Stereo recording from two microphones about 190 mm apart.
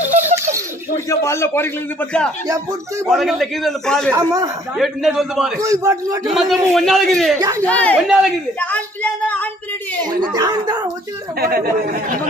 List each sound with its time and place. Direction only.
0.9 s a man's voice: 15° left (ahead or behind)
4.1 s a man's voice: 15° right (ahead or behind)
4.7 s a man's voice: centre (ahead or behind)
5.6 s a man's voice: 15° right (ahead or behind)
6.2 s a man's voice: centre (ahead or behind)
7.3 s speech: 20° right (ahead or behind)
7.6 s a man's voice: 5° left (ahead or behind)
10.3 s speech: 20° right (ahead or behind)
11.3 s speech: 55° right (ahead or behind)